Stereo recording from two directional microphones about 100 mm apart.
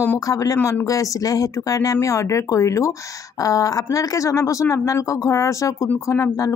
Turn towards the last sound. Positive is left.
turn(degrees=30)  # may be behind; listen again after turning